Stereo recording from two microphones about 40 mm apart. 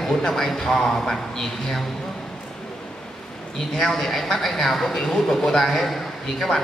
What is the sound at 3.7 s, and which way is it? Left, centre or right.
A woman's voice, centre.